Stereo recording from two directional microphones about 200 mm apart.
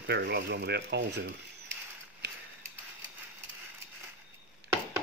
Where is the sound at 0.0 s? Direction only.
55° right (ahead or behind).